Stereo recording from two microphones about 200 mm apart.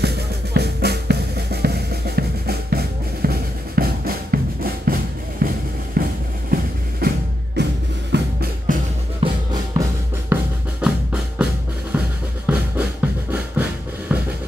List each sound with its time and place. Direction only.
0.6 s drum: 55° right (ahead or behind)
6.0 s music: 45° right (ahead or behind)
6.5 s vehicle: 50° right (ahead or behind)
7.0 s drum: 50° right (ahead or behind)
8.1 s music: 50° right (ahead or behind)
9.2 s music: 20° right (ahead or behind)
10.3 s drum: 5° right (ahead or behind)
12.5 s music: 5° right (ahead or behind)
13.3 s a sound: 10° right (ahead or behind)